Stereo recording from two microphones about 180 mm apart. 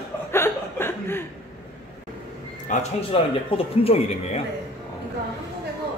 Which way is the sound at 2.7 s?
35° left (ahead or behind).